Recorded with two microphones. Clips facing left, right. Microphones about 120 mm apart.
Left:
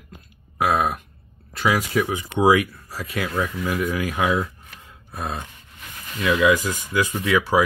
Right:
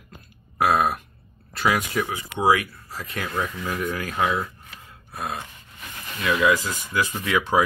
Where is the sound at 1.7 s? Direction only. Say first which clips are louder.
Left 6 dB; 5° left (ahead or behind).